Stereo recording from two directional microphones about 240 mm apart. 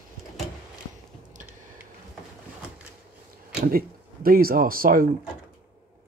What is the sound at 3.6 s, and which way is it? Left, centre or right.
Speech, right.